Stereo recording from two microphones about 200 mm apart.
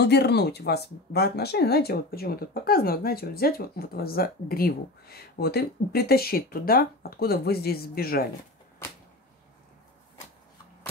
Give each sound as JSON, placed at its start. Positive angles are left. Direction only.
{"t": 0.0, "sound": "speech", "side_deg": 55}